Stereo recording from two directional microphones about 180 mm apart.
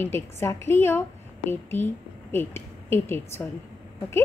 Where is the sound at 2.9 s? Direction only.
15° left (ahead or behind).